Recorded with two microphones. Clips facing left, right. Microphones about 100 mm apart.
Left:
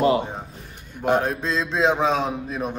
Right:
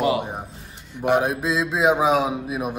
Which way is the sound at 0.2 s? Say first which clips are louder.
Even; 15° right (ahead or behind).